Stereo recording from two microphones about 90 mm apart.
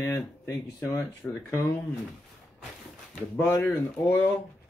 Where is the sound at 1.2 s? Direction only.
10° left (ahead or behind).